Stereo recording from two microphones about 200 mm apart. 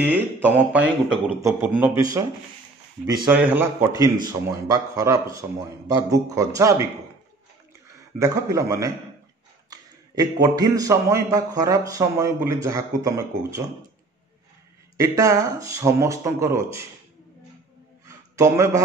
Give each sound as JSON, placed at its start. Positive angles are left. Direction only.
{"t": 0.1, "sound": "speech", "side_deg": -10}
{"t": 3.3, "sound": "speech", "side_deg": -10}
{"t": 8.2, "sound": "speech", "side_deg": -15}
{"t": 15.0, "sound": "speech", "side_deg": -15}
{"t": 18.0, "sound": "a sound", "side_deg": -15}